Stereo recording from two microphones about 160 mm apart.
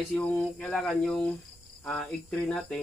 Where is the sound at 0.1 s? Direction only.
10° left (ahead or behind).